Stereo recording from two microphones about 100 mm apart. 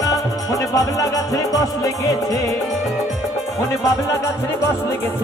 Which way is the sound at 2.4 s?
Centre (ahead or behind).